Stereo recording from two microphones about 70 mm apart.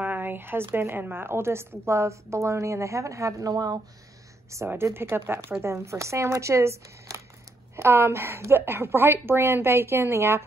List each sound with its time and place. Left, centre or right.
0.0 s a sound: right
0.7 s a woman's voice: right
4.5 s a woman's voice: right
4.9 s speech: right
7.7 s speech: right